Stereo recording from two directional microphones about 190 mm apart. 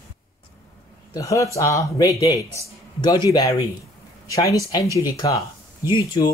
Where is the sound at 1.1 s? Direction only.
15° left (ahead or behind).